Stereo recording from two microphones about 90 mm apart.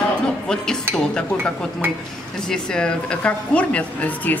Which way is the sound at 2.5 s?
10° left (ahead or behind).